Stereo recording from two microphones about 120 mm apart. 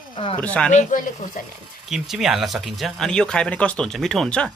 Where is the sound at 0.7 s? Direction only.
90° left.